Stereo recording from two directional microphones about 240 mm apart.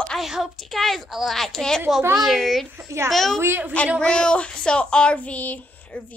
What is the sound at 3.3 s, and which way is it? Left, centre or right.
Speech, centre.